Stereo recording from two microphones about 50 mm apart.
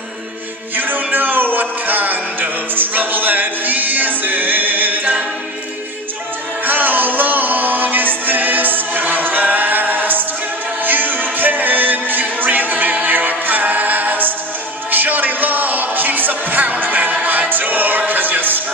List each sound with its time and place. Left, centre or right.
0.7 s music: right
6.6 s music: right